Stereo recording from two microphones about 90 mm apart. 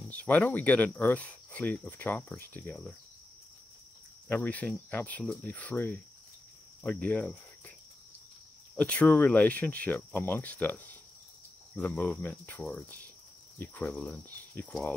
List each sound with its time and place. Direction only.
0.1 s speech: 20° left (ahead or behind)
4.3 s speech: 15° left (ahead or behind)
6.8 s cricket: 15° left (ahead or behind)
8.7 s speech: 15° left (ahead or behind)